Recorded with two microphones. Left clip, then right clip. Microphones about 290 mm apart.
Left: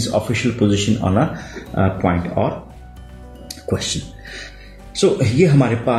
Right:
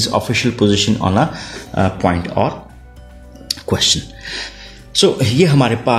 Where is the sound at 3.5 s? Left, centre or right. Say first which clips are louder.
Right 7 dB; right.